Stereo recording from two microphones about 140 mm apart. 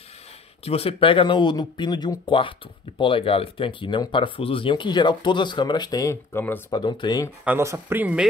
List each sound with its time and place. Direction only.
0.7 s speech: 45° left (ahead or behind)
7.4 s speech: 20° right (ahead or behind)